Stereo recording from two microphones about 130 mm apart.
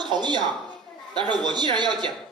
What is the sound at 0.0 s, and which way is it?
A man's voice, 35° right (ahead or behind).